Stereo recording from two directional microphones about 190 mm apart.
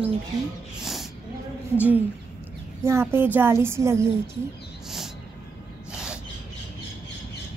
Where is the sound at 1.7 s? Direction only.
10° right (ahead or behind).